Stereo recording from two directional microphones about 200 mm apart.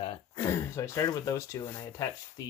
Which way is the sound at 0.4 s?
15° left (ahead or behind).